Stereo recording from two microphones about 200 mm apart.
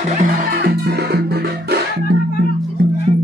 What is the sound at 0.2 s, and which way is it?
Music, 45° right (ahead or behind).